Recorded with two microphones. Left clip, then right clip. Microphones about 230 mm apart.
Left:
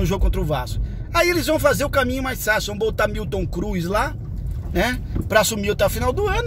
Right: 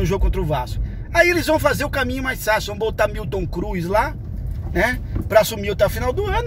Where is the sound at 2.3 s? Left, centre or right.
Centre.